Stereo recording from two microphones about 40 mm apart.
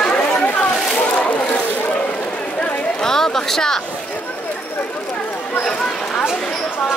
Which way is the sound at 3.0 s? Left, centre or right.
Centre.